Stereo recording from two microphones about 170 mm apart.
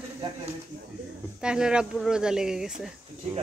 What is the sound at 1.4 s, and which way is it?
Speech, 5° right (ahead or behind).